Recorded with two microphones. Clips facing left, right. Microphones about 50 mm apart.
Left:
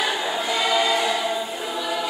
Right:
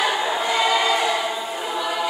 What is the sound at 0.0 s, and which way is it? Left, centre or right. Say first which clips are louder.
Choir: right 3 dB; centre.